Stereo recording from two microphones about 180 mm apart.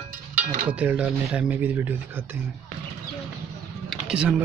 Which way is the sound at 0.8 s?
5° right (ahead or behind).